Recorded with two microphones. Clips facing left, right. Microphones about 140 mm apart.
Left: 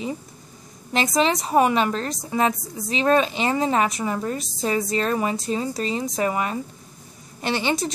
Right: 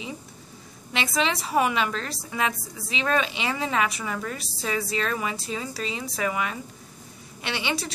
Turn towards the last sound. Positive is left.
turn(degrees=35)  # may be behind; listen again after turning